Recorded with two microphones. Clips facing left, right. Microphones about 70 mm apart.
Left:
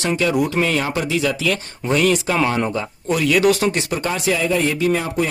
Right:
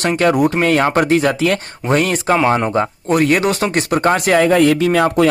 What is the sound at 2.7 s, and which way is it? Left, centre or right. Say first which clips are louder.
Speech: right 6 dB; right.